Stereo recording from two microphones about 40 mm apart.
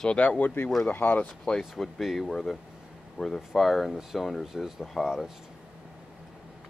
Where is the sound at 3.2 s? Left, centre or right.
Right.